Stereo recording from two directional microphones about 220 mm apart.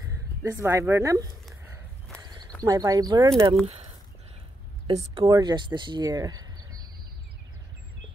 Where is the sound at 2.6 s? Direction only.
15° right (ahead or behind).